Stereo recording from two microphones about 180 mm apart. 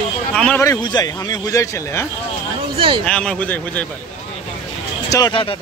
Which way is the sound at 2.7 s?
30° right (ahead or behind).